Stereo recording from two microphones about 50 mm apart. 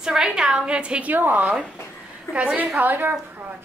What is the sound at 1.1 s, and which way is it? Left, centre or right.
A woman's voice, right.